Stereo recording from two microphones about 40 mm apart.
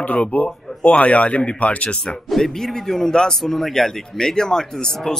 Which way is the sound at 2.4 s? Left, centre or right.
Centre.